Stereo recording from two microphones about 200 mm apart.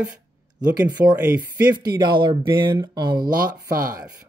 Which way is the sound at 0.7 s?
20° right (ahead or behind).